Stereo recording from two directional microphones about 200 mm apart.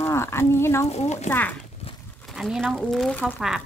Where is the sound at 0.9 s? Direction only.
35° left (ahead or behind).